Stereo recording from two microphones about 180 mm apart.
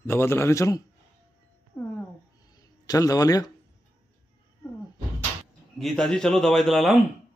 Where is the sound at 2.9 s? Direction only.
20° left (ahead or behind).